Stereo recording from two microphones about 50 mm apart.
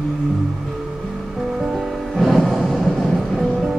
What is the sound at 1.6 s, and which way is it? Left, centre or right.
Music, centre.